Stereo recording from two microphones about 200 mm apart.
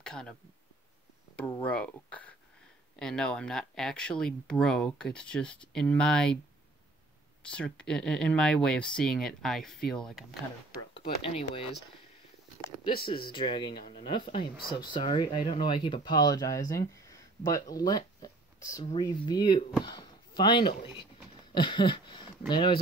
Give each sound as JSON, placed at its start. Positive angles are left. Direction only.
{"t": 0.0, "sound": "speech", "side_deg": 5}
{"t": 1.6, "sound": "speech", "side_deg": 5}
{"t": 7.4, "sound": "speech", "side_deg": 5}
{"t": 11.2, "sound": "speech", "side_deg": 30}
{"t": 12.8, "sound": "speech", "side_deg": 25}
{"t": 21.5, "sound": "a sound", "side_deg": 25}
{"t": 22.5, "sound": "speech", "side_deg": 25}